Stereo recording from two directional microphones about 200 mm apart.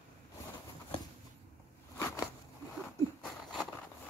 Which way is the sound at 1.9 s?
15° left (ahead or behind).